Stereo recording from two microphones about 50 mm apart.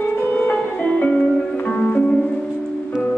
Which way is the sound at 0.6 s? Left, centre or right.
Centre.